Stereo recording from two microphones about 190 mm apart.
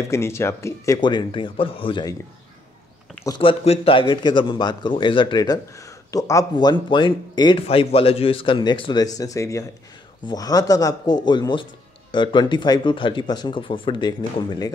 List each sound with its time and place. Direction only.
0.1 s speech: 15° left (ahead or behind)
3.3 s speech: 25° left (ahead or behind)